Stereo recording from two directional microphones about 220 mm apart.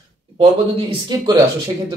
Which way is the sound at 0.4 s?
25° right (ahead or behind).